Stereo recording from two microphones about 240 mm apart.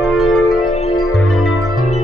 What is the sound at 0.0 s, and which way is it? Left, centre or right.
Music, centre.